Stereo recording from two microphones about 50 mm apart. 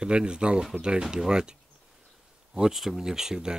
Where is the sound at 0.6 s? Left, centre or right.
Centre.